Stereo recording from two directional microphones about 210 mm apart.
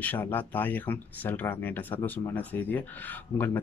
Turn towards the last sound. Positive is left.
turn(degrees=10)  # may be behind; listen again after turning